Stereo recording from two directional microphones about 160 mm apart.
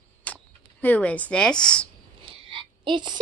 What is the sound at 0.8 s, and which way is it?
A woman's voice, 10° left (ahead or behind).